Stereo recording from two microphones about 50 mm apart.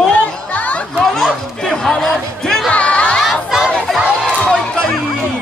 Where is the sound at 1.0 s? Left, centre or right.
Centre.